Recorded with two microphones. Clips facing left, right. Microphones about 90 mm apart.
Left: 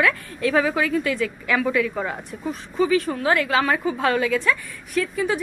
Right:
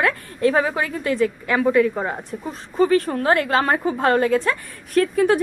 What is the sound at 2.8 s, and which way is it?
A woman's voice, 50° right (ahead or behind).